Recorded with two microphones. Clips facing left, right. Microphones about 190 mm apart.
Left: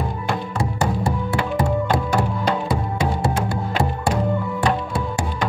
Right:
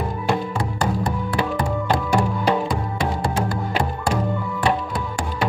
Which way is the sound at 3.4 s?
25° left (ahead or behind).